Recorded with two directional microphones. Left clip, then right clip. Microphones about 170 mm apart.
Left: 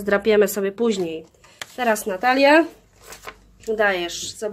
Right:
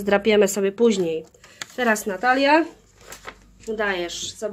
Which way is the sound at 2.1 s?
15° left (ahead or behind).